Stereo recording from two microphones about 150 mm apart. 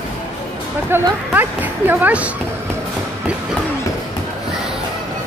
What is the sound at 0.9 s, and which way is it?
Speech, 15° right (ahead or behind).